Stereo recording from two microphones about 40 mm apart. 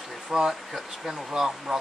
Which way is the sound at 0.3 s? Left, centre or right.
Centre.